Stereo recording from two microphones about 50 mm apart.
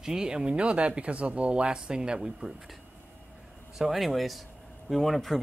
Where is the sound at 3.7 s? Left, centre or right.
Centre.